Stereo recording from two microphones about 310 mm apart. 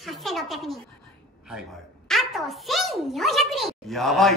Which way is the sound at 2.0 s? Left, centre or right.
Centre.